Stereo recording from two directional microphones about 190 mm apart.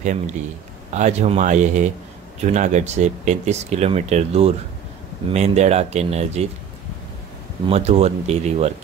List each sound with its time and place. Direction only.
0.9 s speech: 35° right (ahead or behind)
7.6 s speech: 30° right (ahead or behind)